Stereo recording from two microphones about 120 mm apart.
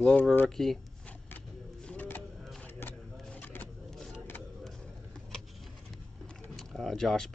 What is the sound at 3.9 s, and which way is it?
Vehicle, centre (ahead or behind).